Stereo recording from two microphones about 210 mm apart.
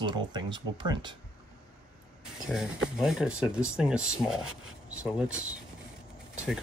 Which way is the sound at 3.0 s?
5° right (ahead or behind).